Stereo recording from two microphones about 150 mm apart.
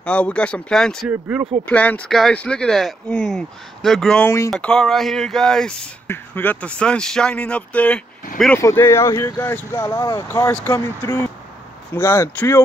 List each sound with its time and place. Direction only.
0.0 s speech: 10° left (ahead or behind)
1.0 s speech: 10° right (ahead or behind)
1.7 s speech: 10° left (ahead or behind)